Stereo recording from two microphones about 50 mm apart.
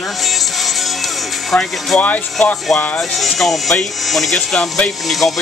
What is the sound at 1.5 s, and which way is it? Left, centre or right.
Music, centre.